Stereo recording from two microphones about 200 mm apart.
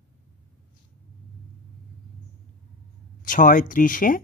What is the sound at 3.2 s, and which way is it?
Speech, 40° left (ahead or behind).